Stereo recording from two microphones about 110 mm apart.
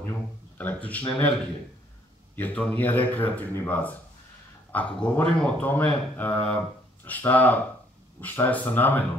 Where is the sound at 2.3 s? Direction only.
15° left (ahead or behind).